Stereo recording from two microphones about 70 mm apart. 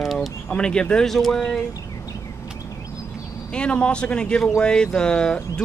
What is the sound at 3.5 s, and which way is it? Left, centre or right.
Speech, centre.